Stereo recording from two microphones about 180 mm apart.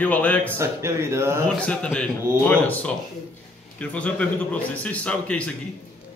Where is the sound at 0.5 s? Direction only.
15° right (ahead or behind).